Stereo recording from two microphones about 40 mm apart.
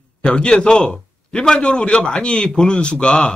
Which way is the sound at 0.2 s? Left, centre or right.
Left.